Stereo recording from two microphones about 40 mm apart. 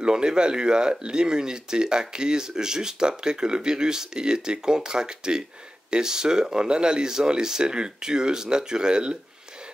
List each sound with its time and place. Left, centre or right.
0.0 s speech: right